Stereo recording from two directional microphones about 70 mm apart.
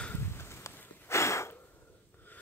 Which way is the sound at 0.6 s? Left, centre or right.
Left.